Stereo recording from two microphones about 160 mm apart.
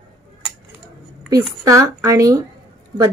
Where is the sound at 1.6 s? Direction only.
20° right (ahead or behind).